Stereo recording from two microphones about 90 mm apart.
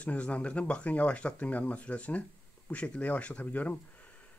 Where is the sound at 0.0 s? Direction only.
15° left (ahead or behind).